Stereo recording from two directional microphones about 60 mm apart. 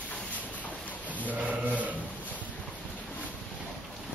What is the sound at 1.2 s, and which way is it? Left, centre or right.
Sheep, right.